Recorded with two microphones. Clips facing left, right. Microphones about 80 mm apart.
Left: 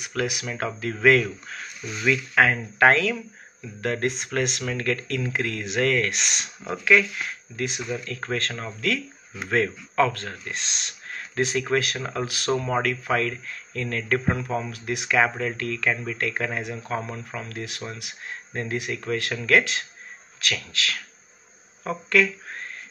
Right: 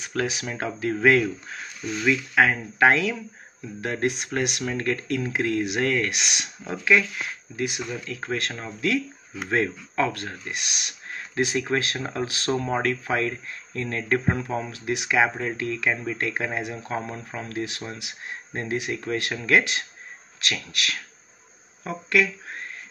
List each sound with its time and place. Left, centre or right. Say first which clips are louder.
0.2 s speech: left 1 dB; right
2.3 s speech: left 1 dB; centre